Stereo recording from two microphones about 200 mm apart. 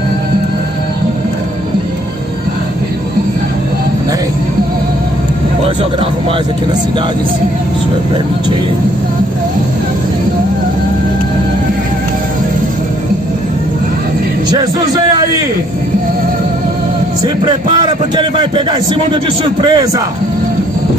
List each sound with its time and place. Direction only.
18.1 s a man's voice: 20° right (ahead or behind)